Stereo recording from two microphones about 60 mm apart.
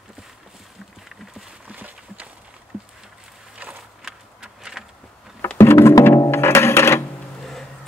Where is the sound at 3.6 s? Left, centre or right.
Right.